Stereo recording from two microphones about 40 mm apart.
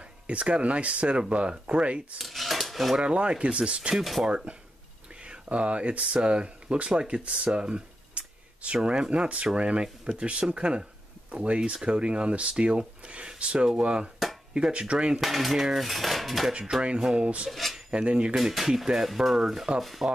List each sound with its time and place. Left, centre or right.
0.3 s speech: right
2.1 s dishes: centre
3.0 s speech: right
3.9 s cutlery: centre
5.2 s speech: right
15.1 s cutlery: centre
17.2 s speech: right
17.5 s dishes: centre
18.0 s speech: right
18.3 s speech: centre
19.8 s cutlery: centre